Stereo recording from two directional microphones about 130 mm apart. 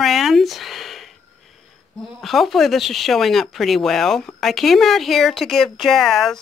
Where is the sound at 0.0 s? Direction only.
Centre (ahead or behind).